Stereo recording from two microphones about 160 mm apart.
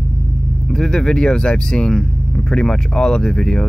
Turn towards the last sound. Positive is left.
turn(degrees=5)  # may be behind; listen again after turning